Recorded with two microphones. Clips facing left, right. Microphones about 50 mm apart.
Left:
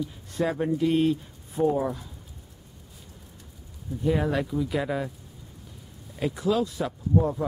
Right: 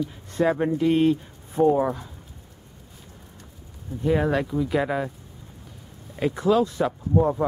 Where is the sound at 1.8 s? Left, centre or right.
Right.